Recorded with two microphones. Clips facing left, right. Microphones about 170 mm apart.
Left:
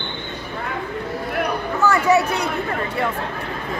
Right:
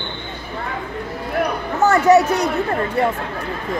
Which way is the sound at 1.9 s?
45° right (ahead or behind).